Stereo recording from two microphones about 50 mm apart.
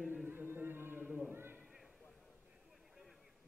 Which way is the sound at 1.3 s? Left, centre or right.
Right.